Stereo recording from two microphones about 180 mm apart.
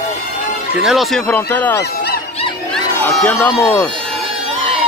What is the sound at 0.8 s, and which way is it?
Speech, centre (ahead or behind).